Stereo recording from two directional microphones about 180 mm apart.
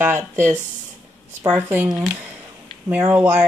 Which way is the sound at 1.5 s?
10° right (ahead or behind).